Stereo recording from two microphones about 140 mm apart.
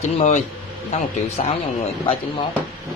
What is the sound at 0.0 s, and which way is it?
A man's voice, 60° left (ahead or behind).